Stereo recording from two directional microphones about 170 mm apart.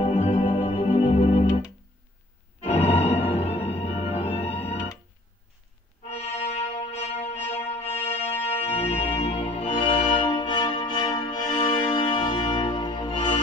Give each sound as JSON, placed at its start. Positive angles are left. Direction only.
{"t": 0.0, "sound": "organ", "side_deg": 40}
{"t": 2.6, "sound": "music", "side_deg": 35}
{"t": 6.0, "sound": "brass instrument", "side_deg": 40}
{"t": 8.5, "sound": "music", "side_deg": 35}